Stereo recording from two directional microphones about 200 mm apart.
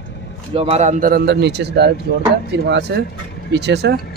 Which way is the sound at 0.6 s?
30° right (ahead or behind).